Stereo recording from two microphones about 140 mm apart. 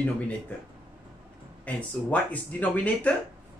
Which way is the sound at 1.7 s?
10° left (ahead or behind).